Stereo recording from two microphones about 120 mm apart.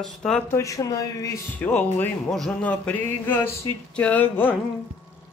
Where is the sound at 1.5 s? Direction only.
15° left (ahead or behind).